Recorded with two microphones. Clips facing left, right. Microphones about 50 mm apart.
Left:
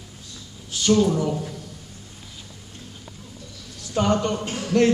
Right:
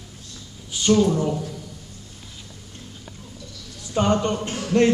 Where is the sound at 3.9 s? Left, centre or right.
Centre.